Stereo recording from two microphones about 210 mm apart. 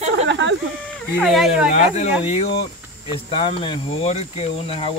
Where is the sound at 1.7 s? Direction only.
35° left (ahead or behind).